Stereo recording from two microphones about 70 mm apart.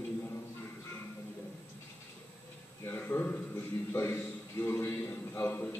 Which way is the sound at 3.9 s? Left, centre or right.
Left.